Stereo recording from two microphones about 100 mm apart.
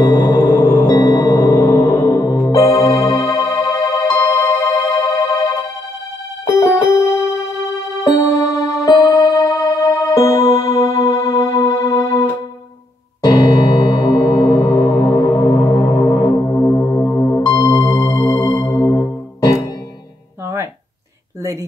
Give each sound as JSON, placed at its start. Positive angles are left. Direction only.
{"t": 0.0, "sound": "music", "side_deg": 50}
{"t": 1.9, "sound": "organ", "side_deg": 35}
{"t": 6.4, "sound": "music", "side_deg": 30}
{"t": 16.2, "sound": "music", "side_deg": 30}